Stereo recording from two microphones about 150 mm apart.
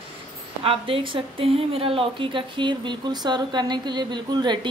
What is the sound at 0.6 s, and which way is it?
A woman's voice, 35° right (ahead or behind).